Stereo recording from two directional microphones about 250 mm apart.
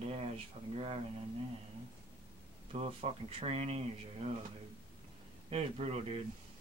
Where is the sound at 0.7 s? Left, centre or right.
Right.